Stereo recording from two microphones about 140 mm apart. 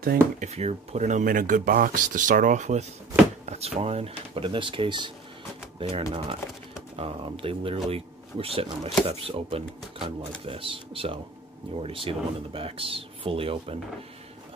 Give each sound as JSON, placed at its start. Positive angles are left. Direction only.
{"t": 0.4, "sound": "speech", "side_deg": -50}